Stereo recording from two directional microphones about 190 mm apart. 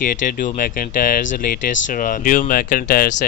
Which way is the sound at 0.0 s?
45° left (ahead or behind).